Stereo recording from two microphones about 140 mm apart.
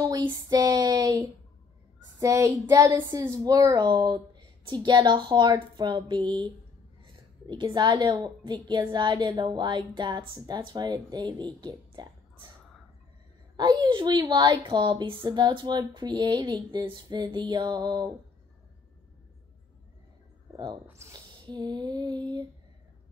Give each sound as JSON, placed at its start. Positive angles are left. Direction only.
{"t": 0.3, "sound": "child singing", "side_deg": -25}
{"t": 2.1, "sound": "a child's voice", "side_deg": -25}
{"t": 13.6, "sound": "a child's voice", "side_deg": -30}
{"t": 20.8, "sound": "speech", "side_deg": -20}
{"t": 21.5, "sound": "a child's voice", "side_deg": -30}